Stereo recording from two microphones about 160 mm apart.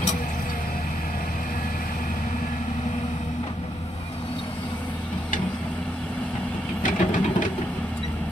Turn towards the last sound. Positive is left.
turn(degrees=55)  # may be behind; listen again after turning